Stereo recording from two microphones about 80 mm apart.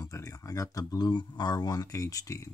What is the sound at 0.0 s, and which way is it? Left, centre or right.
Speech, left.